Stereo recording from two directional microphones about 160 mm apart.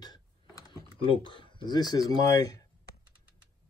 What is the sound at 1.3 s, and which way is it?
Speech, 30° left (ahead or behind).